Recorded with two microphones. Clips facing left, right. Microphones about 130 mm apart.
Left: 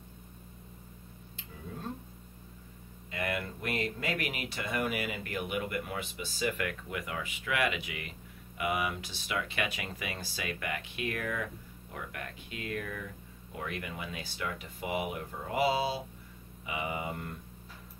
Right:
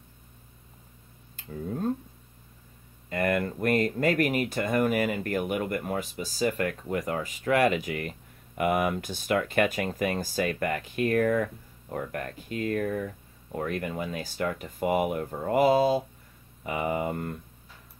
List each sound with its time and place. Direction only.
3.1 s speech: 50° right (ahead or behind)